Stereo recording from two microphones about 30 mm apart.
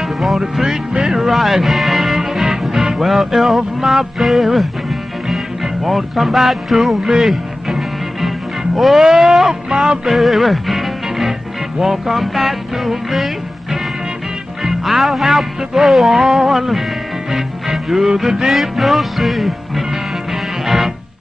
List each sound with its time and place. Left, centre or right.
0.0 s music: centre
0.4 s music: centre
1.3 s music: centre
6.9 s speech: centre
8.7 s music: centre
10.1 s music: centre